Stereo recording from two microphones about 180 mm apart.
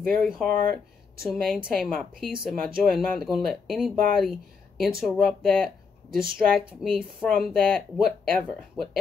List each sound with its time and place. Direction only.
0.3 s speech: 5° left (ahead or behind)
6.0 s speech: 55° right (ahead or behind)
6.8 s speech: centre (ahead or behind)